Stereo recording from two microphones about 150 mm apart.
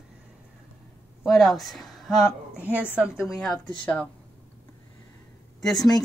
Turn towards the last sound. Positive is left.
turn(degrees=0)  # may be behind; listen again after turning